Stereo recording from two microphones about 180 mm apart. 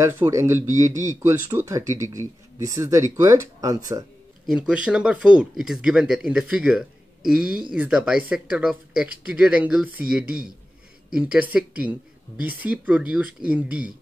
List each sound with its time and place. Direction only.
0.0 s speech: 15° right (ahead or behind)
4.5 s speech: 5° right (ahead or behind)